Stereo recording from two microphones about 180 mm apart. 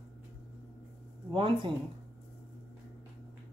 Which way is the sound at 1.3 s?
30° right (ahead or behind).